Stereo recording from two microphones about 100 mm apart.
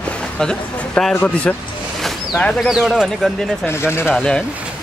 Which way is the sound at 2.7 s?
5° right (ahead or behind).